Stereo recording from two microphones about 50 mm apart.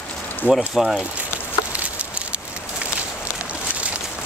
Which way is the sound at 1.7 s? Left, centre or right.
Right.